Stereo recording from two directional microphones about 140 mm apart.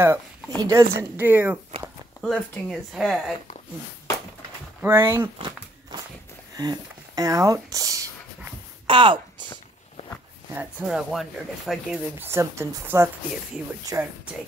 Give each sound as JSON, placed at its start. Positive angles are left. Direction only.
{"t": 0.0, "sound": "speech", "side_deg": -20}
{"t": 2.2, "sound": "speech", "side_deg": 5}
{"t": 4.8, "sound": "speech", "side_deg": -15}
{"t": 6.5, "sound": "speech", "side_deg": -25}
{"t": 8.8, "sound": "a sound", "side_deg": -35}
{"t": 10.5, "sound": "speech", "side_deg": -10}
{"t": 12.2, "sound": "speech", "side_deg": -20}